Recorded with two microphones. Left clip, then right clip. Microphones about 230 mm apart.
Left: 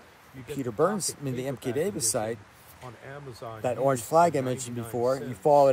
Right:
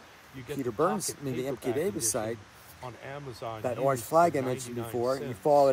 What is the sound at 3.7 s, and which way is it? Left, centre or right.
Speech, left.